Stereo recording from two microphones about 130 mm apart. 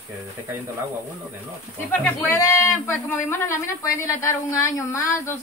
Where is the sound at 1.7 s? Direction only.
15° left (ahead or behind).